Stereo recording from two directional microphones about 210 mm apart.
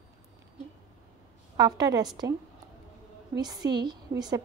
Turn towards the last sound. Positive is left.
turn(degrees=-20)  # may be behind; listen again after turning